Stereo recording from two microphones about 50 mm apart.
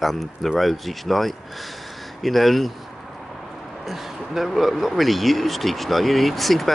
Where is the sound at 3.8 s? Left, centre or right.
Centre.